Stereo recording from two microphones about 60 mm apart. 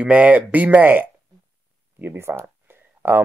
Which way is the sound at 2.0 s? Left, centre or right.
Right.